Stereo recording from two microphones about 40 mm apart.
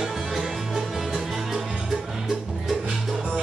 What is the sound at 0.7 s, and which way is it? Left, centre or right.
Music, centre.